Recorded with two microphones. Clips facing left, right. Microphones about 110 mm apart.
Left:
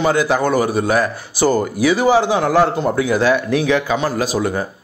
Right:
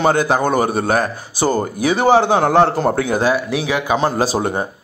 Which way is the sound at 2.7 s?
40° right (ahead or behind).